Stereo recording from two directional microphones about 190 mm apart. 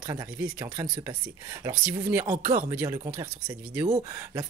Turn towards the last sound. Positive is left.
turn(degrees=-15)  # may be behind; listen again after turning